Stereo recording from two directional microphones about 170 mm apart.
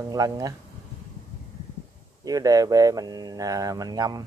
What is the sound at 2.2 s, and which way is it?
Speech, 20° right (ahead or behind).